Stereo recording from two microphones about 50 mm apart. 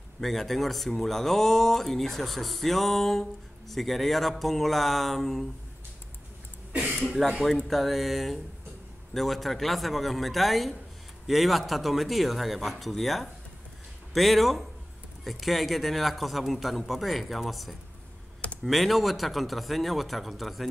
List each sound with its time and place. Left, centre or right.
0.2 s speech: centre
6.7 s a sound: right
7.0 s speech: centre